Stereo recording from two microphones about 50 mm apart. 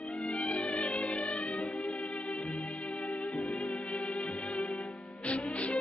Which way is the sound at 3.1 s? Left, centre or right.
Left.